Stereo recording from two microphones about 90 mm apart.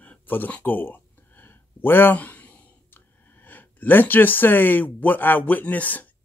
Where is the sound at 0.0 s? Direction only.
20° left (ahead or behind).